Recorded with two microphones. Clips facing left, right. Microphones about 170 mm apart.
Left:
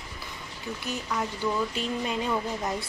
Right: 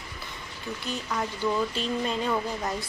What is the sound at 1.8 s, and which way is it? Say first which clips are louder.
Speech: right 1 dB; 10° left (ahead or behind).